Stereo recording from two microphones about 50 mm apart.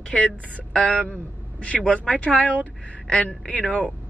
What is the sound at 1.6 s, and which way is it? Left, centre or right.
Speech, left.